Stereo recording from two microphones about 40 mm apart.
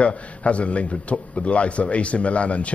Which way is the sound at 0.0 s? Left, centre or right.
Left.